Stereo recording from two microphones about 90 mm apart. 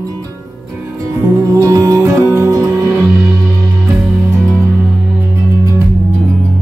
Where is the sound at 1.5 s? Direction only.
35° right (ahead or behind).